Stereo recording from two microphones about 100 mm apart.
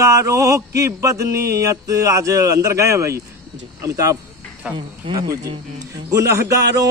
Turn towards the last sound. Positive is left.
turn(degrees=-35)  # may be behind; listen again after turning